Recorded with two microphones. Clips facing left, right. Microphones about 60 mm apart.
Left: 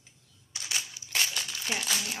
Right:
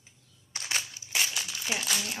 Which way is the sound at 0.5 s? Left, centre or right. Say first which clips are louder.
Right 2 dB; right.